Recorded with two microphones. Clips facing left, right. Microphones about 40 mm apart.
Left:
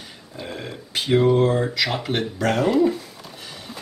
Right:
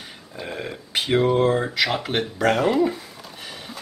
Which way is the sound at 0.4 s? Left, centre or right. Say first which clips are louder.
Right 1 dB; centre.